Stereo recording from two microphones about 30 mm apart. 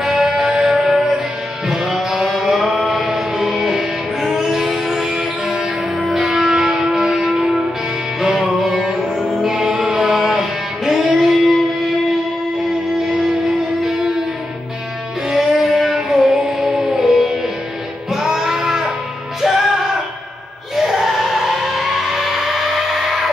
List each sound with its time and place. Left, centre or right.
0.0 s music: centre
2.2 s music: centre
2.9 s chant: centre
3.4 s music: centre
6.0 s church bell: centre
6.4 s music: centre
13.8 s music: centre
15.3 s music: centre